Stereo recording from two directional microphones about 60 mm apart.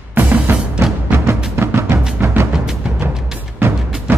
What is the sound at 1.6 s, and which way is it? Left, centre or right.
Music, right.